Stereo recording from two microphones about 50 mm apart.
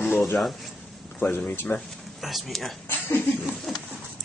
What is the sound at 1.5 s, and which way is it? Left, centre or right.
Speech, left.